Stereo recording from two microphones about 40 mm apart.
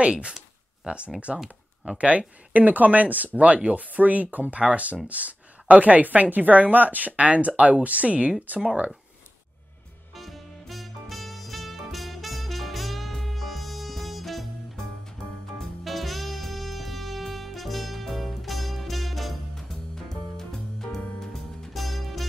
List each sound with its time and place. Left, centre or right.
0.0 s a woman's voice: right
10.1 s music: centre
15.8 s music: centre
21.7 s music: centre